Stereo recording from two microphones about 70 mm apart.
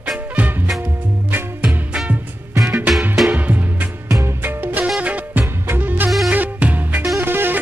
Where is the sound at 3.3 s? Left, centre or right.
Right.